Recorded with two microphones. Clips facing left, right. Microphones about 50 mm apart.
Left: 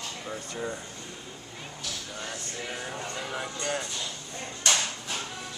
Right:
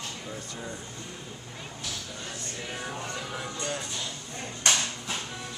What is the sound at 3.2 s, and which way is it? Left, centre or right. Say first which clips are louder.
Speech: left 2 dB; centre.